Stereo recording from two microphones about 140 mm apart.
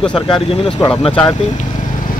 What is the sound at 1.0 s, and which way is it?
Speech, 35° left (ahead or behind).